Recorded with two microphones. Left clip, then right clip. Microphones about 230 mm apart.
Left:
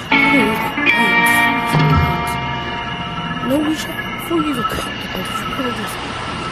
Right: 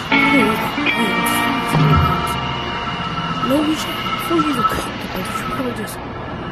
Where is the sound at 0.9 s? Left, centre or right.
Left.